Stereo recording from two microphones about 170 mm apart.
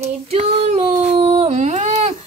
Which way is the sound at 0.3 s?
40° right (ahead or behind).